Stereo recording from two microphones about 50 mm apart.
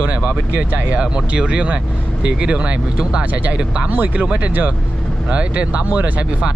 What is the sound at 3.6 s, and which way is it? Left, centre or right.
Speech, right.